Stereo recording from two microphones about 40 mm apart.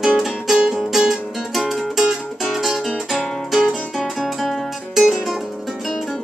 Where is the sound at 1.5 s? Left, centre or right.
Centre.